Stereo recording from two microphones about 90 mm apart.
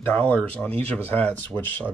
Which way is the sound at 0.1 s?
15° left (ahead or behind).